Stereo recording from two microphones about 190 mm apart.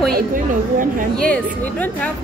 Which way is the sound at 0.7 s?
45° right (ahead or behind).